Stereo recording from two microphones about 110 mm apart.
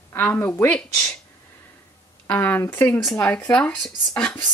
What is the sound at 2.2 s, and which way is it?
Speech, 15° left (ahead or behind).